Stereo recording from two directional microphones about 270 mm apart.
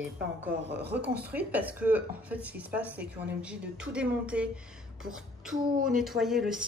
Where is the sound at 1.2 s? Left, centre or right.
Centre.